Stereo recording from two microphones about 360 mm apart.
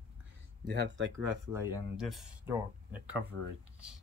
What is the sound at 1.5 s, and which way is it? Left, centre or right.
Speech, centre.